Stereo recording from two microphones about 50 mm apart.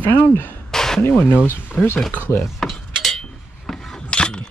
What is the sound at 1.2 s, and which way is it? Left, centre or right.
Speech, left.